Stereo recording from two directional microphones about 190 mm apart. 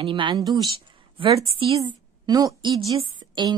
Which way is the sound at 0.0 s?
25° right (ahead or behind).